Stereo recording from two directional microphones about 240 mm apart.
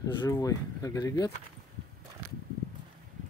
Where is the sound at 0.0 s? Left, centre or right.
Centre.